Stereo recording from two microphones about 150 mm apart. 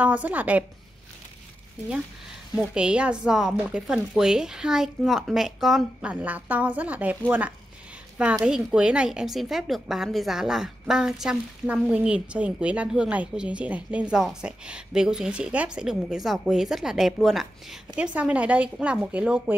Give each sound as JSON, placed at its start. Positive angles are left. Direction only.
{"t": 0.0, "sound": "speech", "side_deg": -10}
{"t": 2.7, "sound": "a woman's voice", "side_deg": -5}